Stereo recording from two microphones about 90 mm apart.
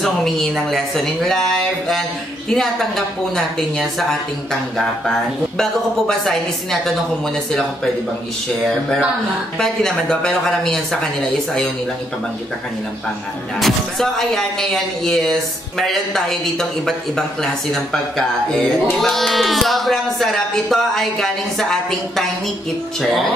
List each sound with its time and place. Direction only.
0.0 s speech: 5° left (ahead or behind)
5.6 s speech: 5° left (ahead or behind)
9.6 s a woman's voice: 5° left (ahead or behind)
13.6 s speech: centre (ahead or behind)
18.1 s speech: 5° left (ahead or behind)